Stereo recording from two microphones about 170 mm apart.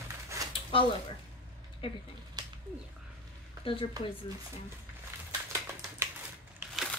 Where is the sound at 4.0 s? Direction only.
20° right (ahead or behind).